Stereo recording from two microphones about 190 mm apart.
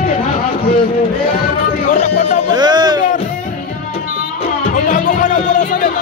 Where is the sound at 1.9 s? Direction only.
40° left (ahead or behind).